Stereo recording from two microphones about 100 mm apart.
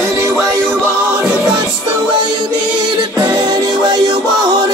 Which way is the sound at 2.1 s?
45° right (ahead or behind).